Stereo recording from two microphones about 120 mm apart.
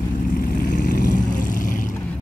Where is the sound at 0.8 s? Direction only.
90° left.